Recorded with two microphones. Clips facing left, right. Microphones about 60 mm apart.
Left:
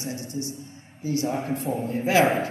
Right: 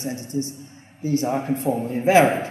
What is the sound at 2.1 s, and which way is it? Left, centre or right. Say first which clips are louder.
Speech: right 5 dB; right.